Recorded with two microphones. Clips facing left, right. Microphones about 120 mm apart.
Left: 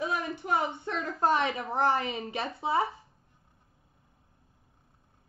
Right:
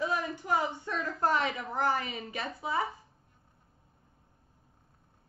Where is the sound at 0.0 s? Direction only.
25° left (ahead or behind).